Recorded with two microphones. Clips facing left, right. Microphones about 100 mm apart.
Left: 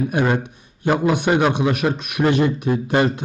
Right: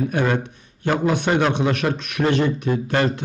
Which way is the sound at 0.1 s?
15° left (ahead or behind).